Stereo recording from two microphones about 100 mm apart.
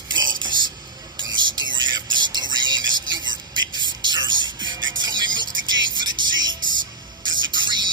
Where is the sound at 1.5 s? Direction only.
50° right (ahead or behind).